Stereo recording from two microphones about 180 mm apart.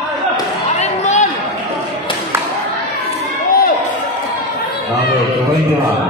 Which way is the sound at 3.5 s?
55° left (ahead or behind).